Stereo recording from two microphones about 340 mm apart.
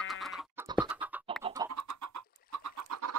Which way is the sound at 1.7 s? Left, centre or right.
Right.